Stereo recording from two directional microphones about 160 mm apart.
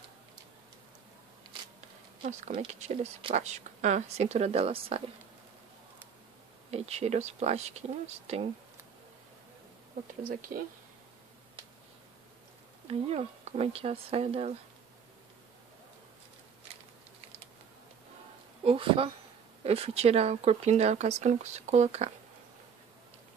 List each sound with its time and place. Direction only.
2.5 s speech: 40° right (ahead or behind)
6.7 s speech: 40° right (ahead or behind)
12.8 s speech: 40° right (ahead or behind)
18.6 s speech: 35° right (ahead or behind)